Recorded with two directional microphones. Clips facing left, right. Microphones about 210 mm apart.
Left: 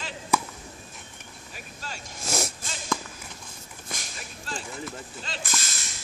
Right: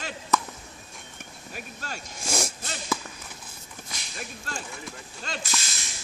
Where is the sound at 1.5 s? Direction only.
50° right (ahead or behind).